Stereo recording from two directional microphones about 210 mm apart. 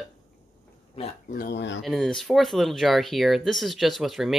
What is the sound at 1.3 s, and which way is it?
Speech, 45° left (ahead or behind).